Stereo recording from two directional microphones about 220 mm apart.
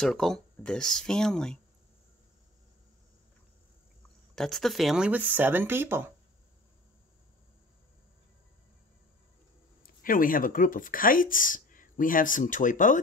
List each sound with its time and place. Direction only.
0.0 s speech: centre (ahead or behind)
4.4 s speech: centre (ahead or behind)
9.8 s speech: 40° left (ahead or behind)